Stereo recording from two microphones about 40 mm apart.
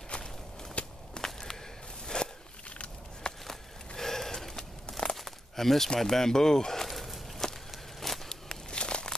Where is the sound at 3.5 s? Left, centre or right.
Centre.